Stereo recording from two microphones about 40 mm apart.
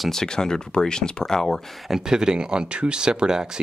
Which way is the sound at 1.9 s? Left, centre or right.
Centre.